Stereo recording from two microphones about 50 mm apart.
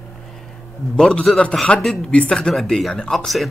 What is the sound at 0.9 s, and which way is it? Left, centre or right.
A man's voice, centre.